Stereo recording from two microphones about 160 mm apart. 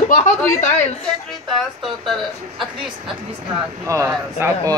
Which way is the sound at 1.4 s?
Centre (ahead or behind).